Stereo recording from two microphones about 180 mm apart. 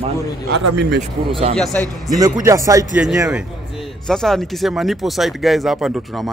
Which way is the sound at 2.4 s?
20° right (ahead or behind).